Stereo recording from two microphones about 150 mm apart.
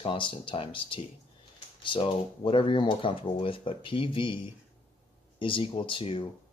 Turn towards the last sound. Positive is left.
turn(degrees=35)  # may be behind; listen again after turning